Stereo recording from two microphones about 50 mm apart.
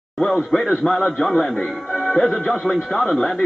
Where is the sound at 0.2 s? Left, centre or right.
Centre.